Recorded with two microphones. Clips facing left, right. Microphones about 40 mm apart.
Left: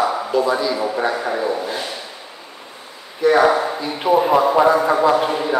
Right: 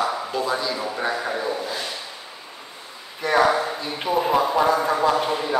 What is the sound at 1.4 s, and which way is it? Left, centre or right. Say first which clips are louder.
Speech: left 5 dB; left.